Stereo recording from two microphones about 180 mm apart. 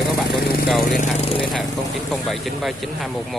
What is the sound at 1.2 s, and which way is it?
Speech, 30° left (ahead or behind).